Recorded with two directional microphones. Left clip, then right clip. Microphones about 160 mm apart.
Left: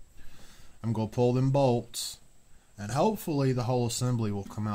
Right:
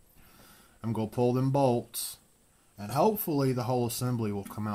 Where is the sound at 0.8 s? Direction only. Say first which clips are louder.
Left 1 dB; 5° right (ahead or behind).